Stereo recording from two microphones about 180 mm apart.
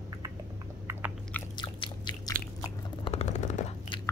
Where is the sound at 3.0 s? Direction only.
35° left (ahead or behind).